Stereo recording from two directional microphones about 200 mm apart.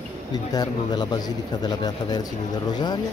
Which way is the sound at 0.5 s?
20° left (ahead or behind).